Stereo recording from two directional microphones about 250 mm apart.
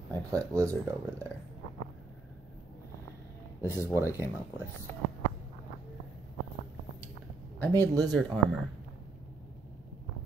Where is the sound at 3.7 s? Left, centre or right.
Centre.